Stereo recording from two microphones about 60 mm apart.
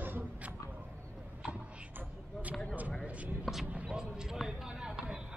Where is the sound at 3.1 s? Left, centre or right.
Right.